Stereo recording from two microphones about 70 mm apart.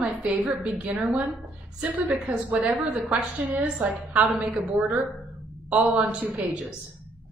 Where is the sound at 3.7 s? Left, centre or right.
Centre.